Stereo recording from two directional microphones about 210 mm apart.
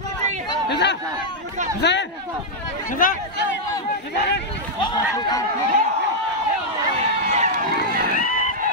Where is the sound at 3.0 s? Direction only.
40° left (ahead or behind).